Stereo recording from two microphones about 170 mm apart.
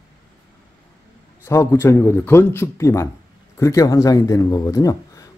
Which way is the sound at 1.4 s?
15° left (ahead or behind).